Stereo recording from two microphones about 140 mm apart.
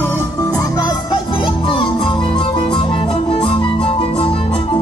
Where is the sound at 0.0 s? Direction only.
15° left (ahead or behind).